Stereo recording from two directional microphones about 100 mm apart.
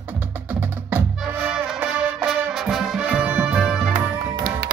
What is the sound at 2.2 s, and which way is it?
Music, 5° right (ahead or behind).